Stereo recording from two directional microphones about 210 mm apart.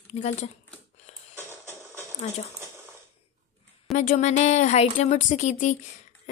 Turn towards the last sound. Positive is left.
turn(degrees=35)  # may be behind; listen again after turning